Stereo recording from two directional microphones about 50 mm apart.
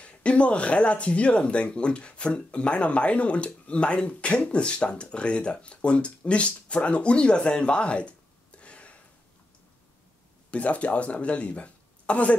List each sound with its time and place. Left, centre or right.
0.0 s speech: left
10.5 s speech: left